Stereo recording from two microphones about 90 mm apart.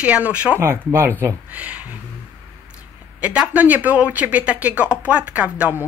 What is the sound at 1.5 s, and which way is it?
Speech, 15° right (ahead or behind).